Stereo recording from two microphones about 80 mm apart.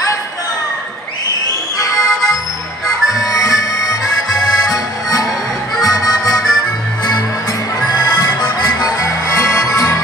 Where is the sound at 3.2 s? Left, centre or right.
Left.